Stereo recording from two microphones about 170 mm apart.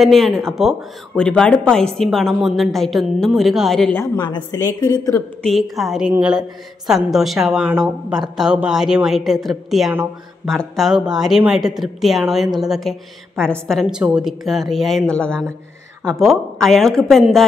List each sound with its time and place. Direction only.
0.0 s speech: centre (ahead or behind)
4.0 s a woman's voice: 25° left (ahead or behind)
5.5 s speech: centre (ahead or behind)